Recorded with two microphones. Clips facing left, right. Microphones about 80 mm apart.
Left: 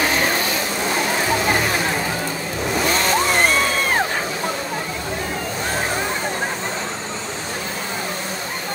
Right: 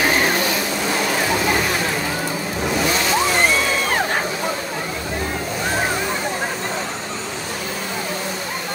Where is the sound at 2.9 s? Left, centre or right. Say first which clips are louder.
Even; left.